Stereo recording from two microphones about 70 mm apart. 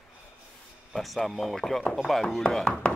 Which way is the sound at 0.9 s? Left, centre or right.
Centre.